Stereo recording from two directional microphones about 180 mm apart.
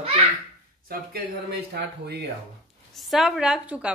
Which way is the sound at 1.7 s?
65° right (ahead or behind).